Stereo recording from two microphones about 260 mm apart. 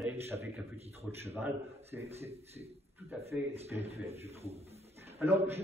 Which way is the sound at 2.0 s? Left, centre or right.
Right.